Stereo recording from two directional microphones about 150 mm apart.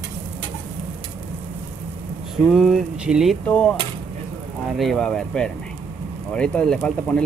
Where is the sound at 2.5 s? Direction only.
Centre (ahead or behind).